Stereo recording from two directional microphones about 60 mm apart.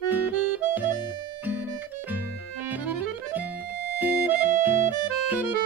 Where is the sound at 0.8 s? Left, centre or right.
Right.